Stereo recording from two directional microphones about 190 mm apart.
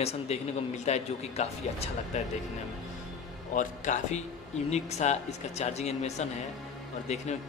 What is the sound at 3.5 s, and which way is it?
Speech, 40° left (ahead or behind).